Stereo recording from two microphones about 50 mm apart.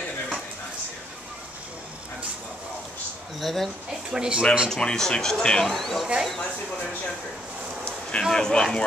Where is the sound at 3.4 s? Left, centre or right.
Centre.